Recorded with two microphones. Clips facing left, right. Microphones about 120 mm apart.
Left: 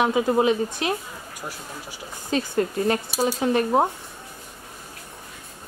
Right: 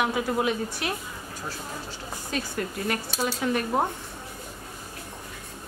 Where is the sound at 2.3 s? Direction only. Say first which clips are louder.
Left 8 dB; 30° left (ahead or behind).